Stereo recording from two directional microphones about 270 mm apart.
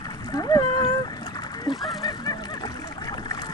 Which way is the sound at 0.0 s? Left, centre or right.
Centre.